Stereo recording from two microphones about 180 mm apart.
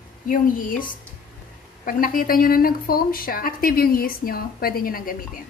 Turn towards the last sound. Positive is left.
turn(degrees=50)  # may be behind; listen again after turning